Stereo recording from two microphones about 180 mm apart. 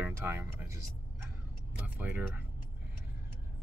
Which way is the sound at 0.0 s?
15° right (ahead or behind).